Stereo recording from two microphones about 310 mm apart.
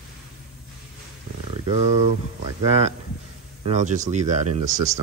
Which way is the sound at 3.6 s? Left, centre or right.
Right.